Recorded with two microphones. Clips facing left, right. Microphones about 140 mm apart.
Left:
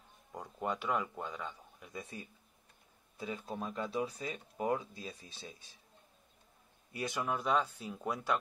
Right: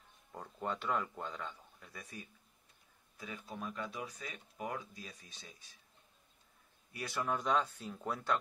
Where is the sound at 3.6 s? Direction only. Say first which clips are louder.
Left 5 dB; 30° left (ahead or behind).